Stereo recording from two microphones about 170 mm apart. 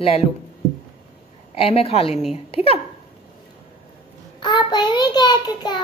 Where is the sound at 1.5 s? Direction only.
35° left (ahead or behind).